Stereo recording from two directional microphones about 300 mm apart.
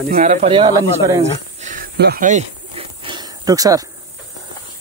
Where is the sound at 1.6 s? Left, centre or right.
Right.